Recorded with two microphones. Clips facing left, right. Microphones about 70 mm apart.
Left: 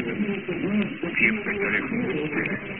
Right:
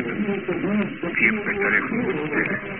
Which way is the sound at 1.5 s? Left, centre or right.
Right.